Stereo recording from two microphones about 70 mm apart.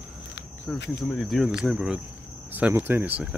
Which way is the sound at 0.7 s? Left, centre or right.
Centre.